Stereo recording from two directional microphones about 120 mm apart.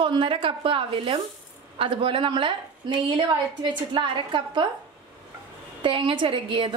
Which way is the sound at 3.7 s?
45° right (ahead or behind).